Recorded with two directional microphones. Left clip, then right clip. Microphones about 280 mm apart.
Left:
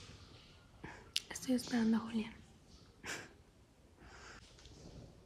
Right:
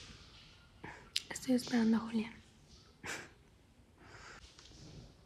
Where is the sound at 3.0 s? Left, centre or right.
Centre.